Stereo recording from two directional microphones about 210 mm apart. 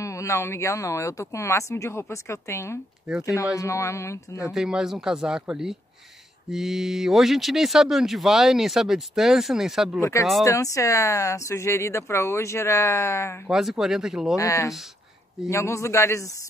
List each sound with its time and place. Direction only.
0.0 s speech: 15° left (ahead or behind)
3.1 s speech: 5° right (ahead or behind)
3.5 s speech: 15° left (ahead or behind)
4.5 s speech: 5° right (ahead or behind)
10.4 s speech: 15° left (ahead or behind)
13.5 s speech: centre (ahead or behind)
14.3 s speech: 15° left (ahead or behind)